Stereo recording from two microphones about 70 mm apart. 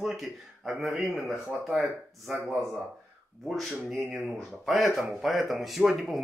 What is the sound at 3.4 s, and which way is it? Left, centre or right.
Speech, centre.